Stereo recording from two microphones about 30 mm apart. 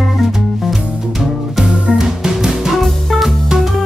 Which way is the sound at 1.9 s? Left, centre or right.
Centre.